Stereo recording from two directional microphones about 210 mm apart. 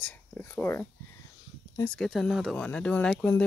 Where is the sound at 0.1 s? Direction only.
10° left (ahead or behind).